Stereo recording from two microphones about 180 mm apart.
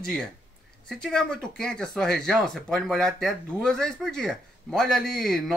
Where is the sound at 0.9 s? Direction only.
5° left (ahead or behind).